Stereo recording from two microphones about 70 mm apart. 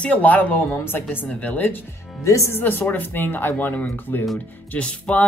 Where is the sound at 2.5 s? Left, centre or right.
Left.